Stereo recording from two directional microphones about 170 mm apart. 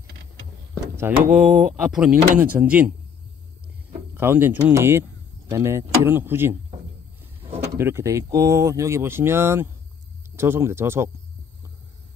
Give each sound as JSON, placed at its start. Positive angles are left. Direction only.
{"t": 1.3, "sound": "speech", "side_deg": -5}
{"t": 4.1, "sound": "speech", "side_deg": -10}
{"t": 7.7, "sound": "speech", "side_deg": -15}